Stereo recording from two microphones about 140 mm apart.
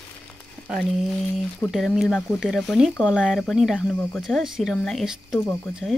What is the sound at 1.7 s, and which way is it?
Speech, centre (ahead or behind).